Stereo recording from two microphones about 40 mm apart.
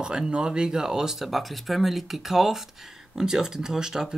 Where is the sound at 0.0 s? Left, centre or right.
Centre.